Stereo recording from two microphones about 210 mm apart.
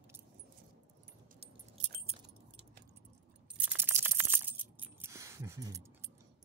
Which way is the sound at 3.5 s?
10° right (ahead or behind).